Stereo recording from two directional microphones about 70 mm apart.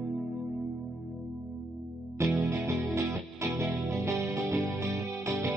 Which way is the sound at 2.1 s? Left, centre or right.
Right.